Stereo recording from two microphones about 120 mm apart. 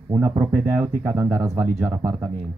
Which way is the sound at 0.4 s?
15° right (ahead or behind).